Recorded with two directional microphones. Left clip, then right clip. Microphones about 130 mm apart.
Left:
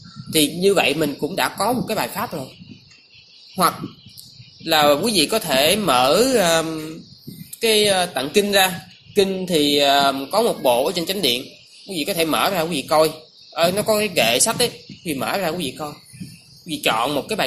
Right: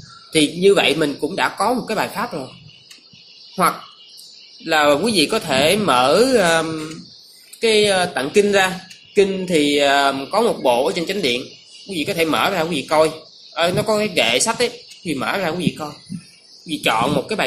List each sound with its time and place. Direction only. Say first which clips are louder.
0.3 s speech: right 3 dB; 45° left (ahead or behind)
4.6 s speech: right 1 dB; 50° left (ahead or behind)
7.6 s speech: right 2 dB; 50° left (ahead or behind)